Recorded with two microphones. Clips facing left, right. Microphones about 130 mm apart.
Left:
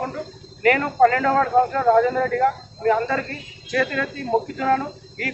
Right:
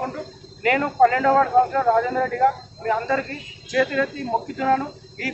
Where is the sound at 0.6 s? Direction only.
20° right (ahead or behind).